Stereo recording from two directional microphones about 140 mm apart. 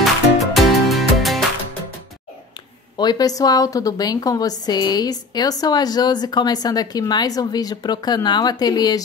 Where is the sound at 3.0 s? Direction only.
30° left (ahead or behind).